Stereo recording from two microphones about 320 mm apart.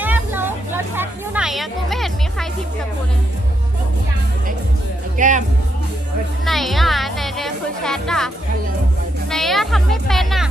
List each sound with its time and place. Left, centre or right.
0.0 s music: centre
5.1 s music: right
6.4 s music: centre
9.3 s music: centre